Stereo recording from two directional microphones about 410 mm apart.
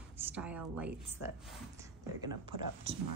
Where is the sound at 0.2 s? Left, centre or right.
Centre.